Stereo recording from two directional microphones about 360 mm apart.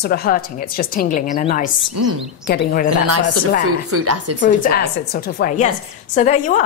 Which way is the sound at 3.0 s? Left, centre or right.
Right.